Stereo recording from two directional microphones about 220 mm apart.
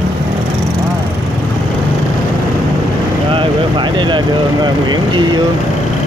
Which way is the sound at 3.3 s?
20° right (ahead or behind).